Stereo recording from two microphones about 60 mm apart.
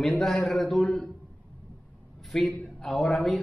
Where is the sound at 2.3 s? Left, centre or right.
Centre.